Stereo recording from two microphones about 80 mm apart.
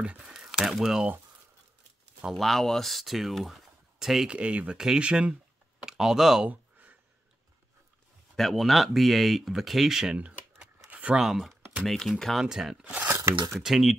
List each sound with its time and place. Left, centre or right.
0.0 s speech: centre
2.2 s speech: centre
6.5 s a sound: right
8.4 s speech: centre
10.9 s a sound: centre
11.1 s speech: centre
12.8 s speech: right
13.5 s speech: centre